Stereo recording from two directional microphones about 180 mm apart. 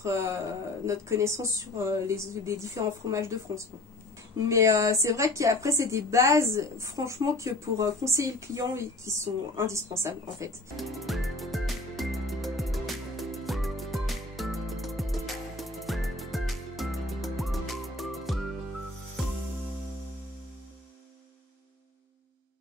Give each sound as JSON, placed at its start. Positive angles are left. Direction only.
{"t": 0.0, "sound": "a woman's voice", "side_deg": -15}
{"t": 10.8, "sound": "music", "side_deg": 0}